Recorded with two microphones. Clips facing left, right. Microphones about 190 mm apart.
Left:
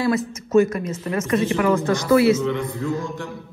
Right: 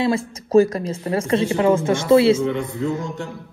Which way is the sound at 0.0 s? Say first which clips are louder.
Right 1 dB; 30° right (ahead or behind).